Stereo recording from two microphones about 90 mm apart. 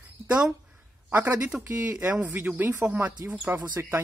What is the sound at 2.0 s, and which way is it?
Speech, 15° right (ahead or behind).